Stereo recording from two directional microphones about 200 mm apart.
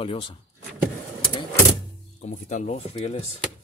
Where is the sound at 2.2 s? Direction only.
35° left (ahead or behind).